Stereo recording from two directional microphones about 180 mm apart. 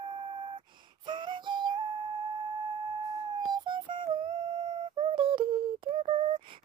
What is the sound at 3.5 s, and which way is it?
Music, 25° right (ahead or behind).